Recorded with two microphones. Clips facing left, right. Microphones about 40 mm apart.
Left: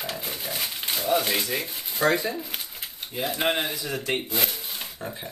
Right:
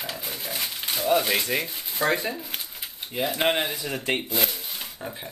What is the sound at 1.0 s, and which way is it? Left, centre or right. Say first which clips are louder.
Speech: right 2 dB; centre.